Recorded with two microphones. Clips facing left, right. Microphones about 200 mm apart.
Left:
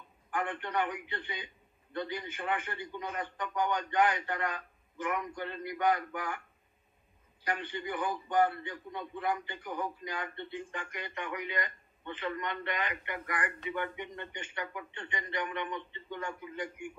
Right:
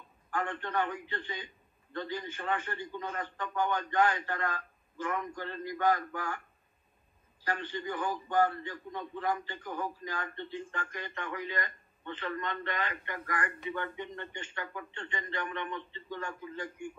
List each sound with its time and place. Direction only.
0.3 s speech: 15° left (ahead or behind)
7.4 s speech: 15° left (ahead or behind)